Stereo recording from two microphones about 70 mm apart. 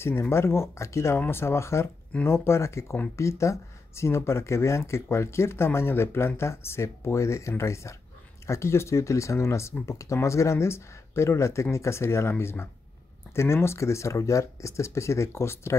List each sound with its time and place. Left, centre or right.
0.0 s speech: left